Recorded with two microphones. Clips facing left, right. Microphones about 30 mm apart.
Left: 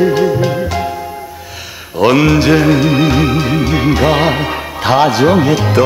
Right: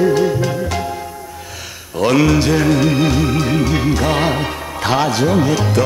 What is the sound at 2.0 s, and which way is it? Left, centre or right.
Music, left.